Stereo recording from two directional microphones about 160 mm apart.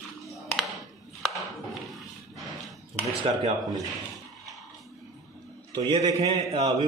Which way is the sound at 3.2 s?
30° right (ahead or behind).